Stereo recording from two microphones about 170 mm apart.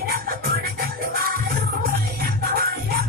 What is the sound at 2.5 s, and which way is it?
Music, 60° right (ahead or behind).